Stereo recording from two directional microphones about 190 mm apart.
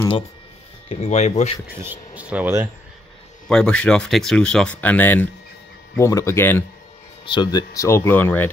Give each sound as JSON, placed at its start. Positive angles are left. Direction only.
{"t": 0.8, "sound": "speech", "side_deg": 35}
{"t": 1.8, "sound": "speech", "side_deg": -10}
{"t": 3.4, "sound": "speech", "side_deg": 5}
{"t": 7.2, "sound": "speech", "side_deg": 25}